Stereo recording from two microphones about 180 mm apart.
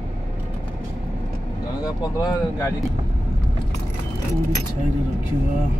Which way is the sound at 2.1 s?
20° left (ahead or behind).